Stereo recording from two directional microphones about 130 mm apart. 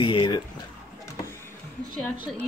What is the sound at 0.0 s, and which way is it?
Speech, 35° left (ahead or behind).